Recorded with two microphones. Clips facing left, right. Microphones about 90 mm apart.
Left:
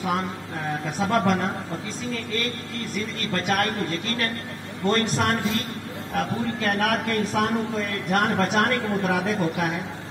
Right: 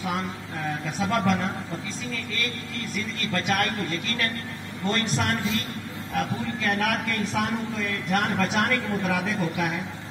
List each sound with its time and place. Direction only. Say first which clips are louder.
0.8 s a man's voice: left 2 dB; 45° left (ahead or behind)
3.2 s a man's voice: left 1 dB; 40° left (ahead or behind)